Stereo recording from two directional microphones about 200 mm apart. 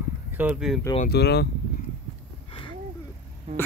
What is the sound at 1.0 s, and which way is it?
Speech, 55° left (ahead or behind).